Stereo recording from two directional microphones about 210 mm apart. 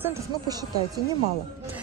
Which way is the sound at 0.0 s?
15° right (ahead or behind).